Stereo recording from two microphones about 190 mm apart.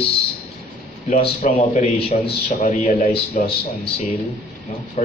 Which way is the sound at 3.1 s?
30° left (ahead or behind).